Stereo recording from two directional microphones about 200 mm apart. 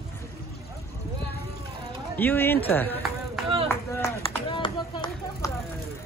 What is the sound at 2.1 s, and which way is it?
Speech, 10° left (ahead or behind).